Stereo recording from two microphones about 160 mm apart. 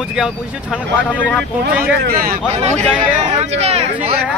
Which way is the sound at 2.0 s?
65° right (ahead or behind).